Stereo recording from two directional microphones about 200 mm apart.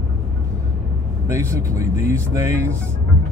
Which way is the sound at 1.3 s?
15° right (ahead or behind).